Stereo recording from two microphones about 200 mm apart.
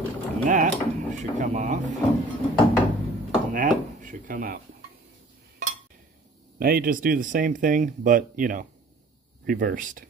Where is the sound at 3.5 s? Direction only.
40° right (ahead or behind).